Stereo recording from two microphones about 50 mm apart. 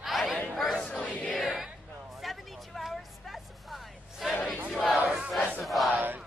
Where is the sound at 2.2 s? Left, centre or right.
Centre.